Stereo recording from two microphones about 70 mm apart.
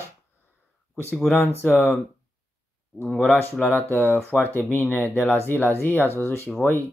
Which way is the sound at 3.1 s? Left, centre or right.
Centre.